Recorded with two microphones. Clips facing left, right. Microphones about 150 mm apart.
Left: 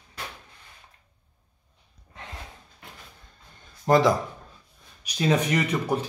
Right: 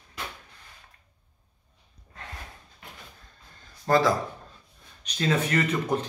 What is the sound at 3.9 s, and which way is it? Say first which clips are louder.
A man's voice: left 2 dB; 20° left (ahead or behind).